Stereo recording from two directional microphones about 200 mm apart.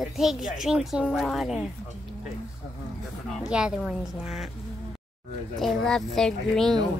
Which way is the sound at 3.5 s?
5° right (ahead or behind).